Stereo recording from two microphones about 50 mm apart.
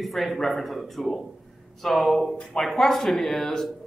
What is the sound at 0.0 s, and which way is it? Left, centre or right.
A man's voice, centre.